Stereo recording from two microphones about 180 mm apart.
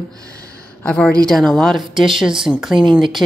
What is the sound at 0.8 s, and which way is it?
Speech, 5° left (ahead or behind).